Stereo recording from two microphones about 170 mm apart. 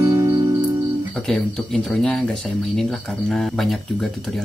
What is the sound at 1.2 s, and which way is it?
Speech, 5° left (ahead or behind).